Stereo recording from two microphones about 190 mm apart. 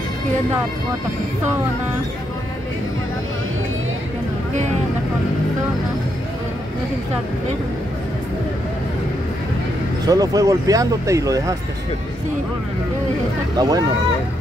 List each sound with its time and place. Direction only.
10.0 s speech: 20° right (ahead or behind)
13.6 s speech: 20° right (ahead or behind)